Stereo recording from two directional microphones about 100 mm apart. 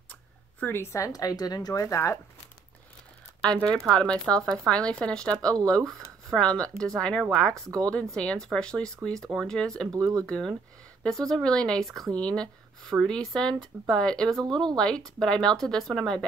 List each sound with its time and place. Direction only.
0.1 s speech: 20° left (ahead or behind)
3.3 s speech: 10° left (ahead or behind)
9.9 s speech: 35° right (ahead or behind)
10.2 s speech: 5° left (ahead or behind)